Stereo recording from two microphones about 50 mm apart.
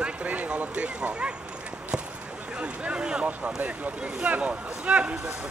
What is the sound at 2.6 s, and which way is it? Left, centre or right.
A man's voice, right.